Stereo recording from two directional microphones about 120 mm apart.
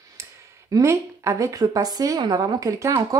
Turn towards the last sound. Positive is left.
turn(degrees=-25)  # may be behind; listen again after turning